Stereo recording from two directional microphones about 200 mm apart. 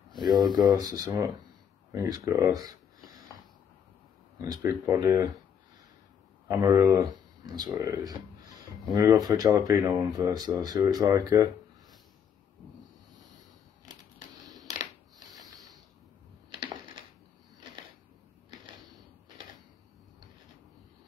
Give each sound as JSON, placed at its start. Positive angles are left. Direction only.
{"t": 0.7, "sound": "speech", "side_deg": -20}
{"t": 4.4, "sound": "speech", "side_deg": -15}
{"t": 6.4, "sound": "speech", "side_deg": -15}
{"t": 14.7, "sound": "a sound", "side_deg": -20}